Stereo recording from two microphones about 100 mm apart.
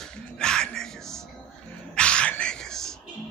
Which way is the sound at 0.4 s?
5° left (ahead or behind).